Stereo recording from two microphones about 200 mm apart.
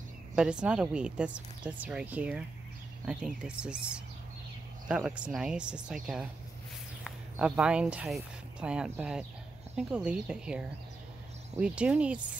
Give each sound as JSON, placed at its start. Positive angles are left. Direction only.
{"t": 0.4, "sound": "speech", "side_deg": -5}